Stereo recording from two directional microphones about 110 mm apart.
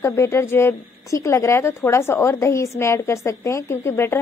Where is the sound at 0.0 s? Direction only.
25° left (ahead or behind).